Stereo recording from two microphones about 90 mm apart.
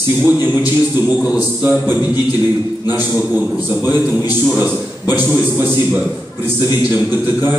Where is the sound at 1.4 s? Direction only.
25° right (ahead or behind).